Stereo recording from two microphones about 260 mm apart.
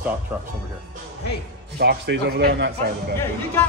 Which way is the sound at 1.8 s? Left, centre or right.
Right.